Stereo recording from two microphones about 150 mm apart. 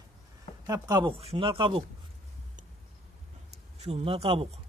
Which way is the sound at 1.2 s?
40° right (ahead or behind).